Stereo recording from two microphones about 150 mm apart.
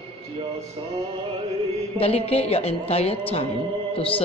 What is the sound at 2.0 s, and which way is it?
A woman's voice, 40° left (ahead or behind).